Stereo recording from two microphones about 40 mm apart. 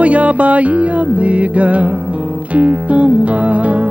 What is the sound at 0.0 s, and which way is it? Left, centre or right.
Music, right.